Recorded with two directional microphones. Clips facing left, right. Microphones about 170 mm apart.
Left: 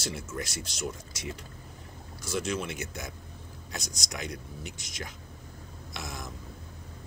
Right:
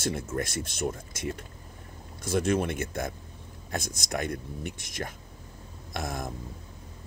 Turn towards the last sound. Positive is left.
turn(degrees=-50)  # may be behind; listen again after turning